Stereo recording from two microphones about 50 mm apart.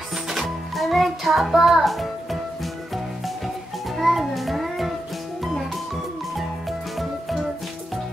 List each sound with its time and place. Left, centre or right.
0.3 s music: centre
3.9 s music: centre